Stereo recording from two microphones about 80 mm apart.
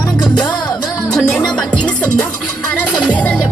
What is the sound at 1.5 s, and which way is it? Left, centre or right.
Music, centre.